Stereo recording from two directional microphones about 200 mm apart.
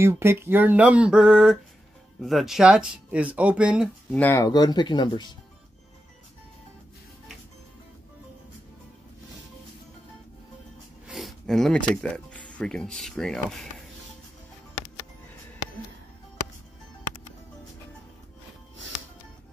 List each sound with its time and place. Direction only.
0.0 s speech: 10° right (ahead or behind)
4.1 s speech: 10° left (ahead or behind)
11.1 s speech: centre (ahead or behind)